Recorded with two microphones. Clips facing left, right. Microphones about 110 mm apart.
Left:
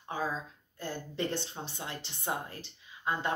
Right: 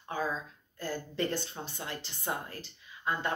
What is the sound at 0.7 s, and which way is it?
Speech, 25° left (ahead or behind).